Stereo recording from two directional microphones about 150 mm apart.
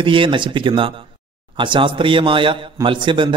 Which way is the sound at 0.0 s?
35° right (ahead or behind).